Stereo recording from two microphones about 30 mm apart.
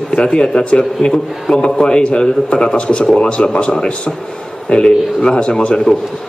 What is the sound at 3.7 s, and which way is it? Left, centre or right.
A man's voice, left.